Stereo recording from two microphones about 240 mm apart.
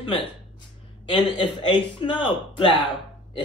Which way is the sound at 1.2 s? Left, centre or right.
Centre.